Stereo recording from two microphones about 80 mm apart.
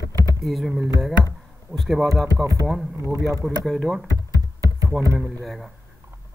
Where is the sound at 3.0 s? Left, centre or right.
Right.